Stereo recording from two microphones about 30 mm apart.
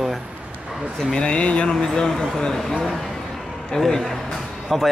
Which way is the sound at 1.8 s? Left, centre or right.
Centre.